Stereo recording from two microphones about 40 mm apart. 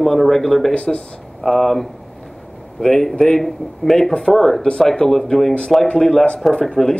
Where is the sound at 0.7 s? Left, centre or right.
Left.